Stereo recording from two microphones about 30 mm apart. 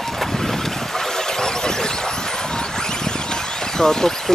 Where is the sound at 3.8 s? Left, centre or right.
Left.